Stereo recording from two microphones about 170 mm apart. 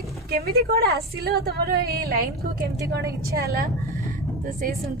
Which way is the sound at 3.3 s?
65° right (ahead or behind).